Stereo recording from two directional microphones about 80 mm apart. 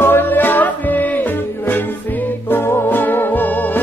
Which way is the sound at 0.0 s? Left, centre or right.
Left.